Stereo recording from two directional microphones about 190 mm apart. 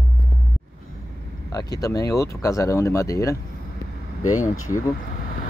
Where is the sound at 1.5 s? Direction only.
20° left (ahead or behind).